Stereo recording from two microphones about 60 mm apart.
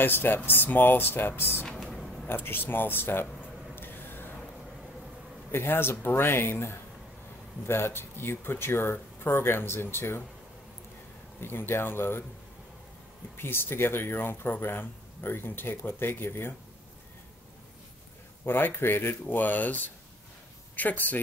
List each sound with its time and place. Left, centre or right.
0.0 s speech: left
1.9 s a sound: centre
2.2 s speech: left
3.7 s a sound: left
5.5 s speech: left
11.4 s speech: left
13.4 s speech: left
18.4 s speech: left